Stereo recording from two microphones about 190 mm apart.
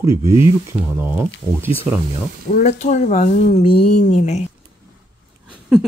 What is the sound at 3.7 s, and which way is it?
Speech, 55° left (ahead or behind).